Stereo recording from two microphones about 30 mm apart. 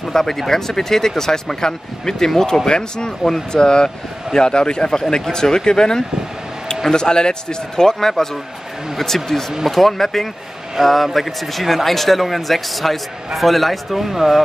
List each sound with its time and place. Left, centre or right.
0.1 s a man's voice: centre